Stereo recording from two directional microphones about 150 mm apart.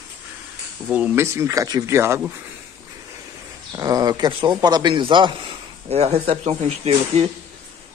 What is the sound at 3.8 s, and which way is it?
A man's voice, 25° right (ahead or behind).